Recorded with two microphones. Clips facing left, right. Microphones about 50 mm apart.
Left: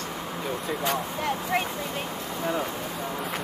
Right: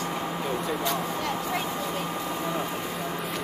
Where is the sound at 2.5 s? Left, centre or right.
Centre.